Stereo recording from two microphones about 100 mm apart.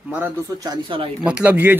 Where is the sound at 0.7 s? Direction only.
60° right (ahead or behind).